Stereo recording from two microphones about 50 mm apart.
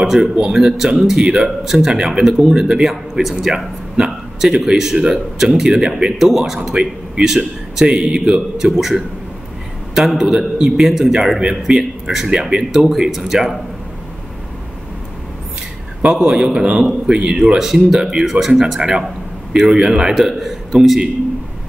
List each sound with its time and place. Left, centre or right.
0.0 s speech: centre
8.7 s speech: centre
16.0 s speech: centre